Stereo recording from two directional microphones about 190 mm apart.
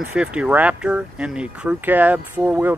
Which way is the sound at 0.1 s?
5° right (ahead or behind).